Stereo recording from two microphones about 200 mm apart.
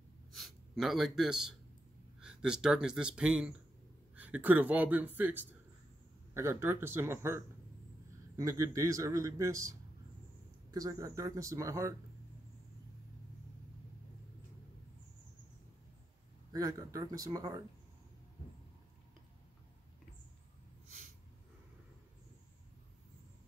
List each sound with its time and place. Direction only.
0.3 s a sound: centre (ahead or behind)
2.1 s a man's voice: 5° right (ahead or behind)
16.5 s speech: 20° right (ahead or behind)